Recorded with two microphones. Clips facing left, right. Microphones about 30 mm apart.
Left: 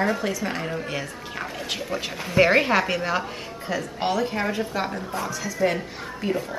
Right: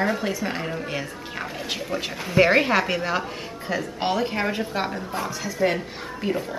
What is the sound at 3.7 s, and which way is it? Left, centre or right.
A woman's voice, centre.